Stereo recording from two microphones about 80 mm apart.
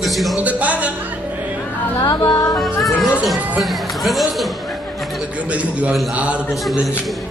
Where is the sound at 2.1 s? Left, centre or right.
Left.